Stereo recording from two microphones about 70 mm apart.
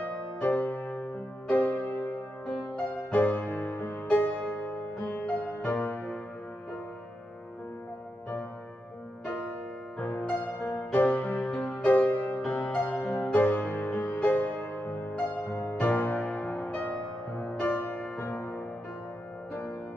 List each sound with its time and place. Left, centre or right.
0.0 s music: left
9.2 s music: left
11.4 s music: centre
11.7 s music: left
12.8 s music: centre
13.1 s music: left